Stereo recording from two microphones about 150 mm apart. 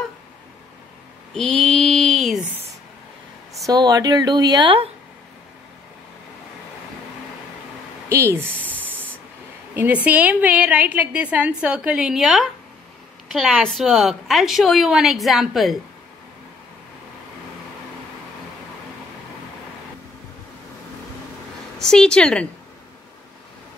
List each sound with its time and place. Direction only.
1.3 s mantra: 5° left (ahead or behind)
3.6 s speech: 25° right (ahead or behind)
8.1 s a woman's voice: 15° right (ahead or behind); by 15.8 s centre (ahead or behind)
21.7 s a woman's voice: 5° left (ahead or behind)